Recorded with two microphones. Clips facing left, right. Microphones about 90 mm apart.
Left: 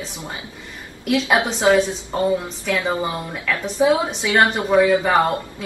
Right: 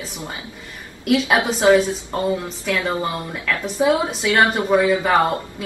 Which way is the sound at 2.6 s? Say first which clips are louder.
Right 1 dB; 15° left (ahead or behind).